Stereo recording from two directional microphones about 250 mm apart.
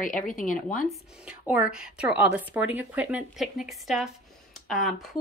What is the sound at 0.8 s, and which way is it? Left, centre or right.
A woman's voice, centre.